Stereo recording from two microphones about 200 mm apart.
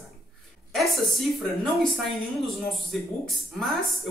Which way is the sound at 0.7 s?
Centre (ahead or behind).